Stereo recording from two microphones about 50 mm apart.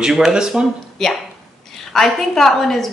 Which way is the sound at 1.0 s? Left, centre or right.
Centre.